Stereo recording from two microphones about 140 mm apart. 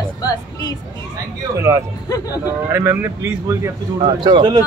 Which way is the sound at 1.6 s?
20° right (ahead or behind).